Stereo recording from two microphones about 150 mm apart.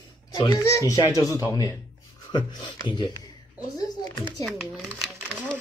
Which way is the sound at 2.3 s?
30° left (ahead or behind).